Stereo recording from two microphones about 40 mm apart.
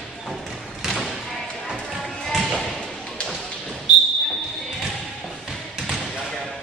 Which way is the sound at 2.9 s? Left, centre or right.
Centre.